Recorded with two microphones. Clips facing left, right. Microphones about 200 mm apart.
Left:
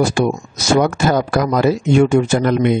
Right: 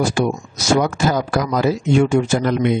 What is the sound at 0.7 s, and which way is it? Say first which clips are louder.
Speech: left 4 dB; 55° left (ahead or behind).